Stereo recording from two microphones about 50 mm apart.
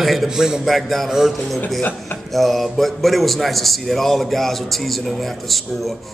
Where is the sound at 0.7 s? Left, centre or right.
Centre.